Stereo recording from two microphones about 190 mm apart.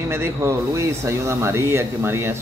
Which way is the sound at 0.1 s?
15° right (ahead or behind).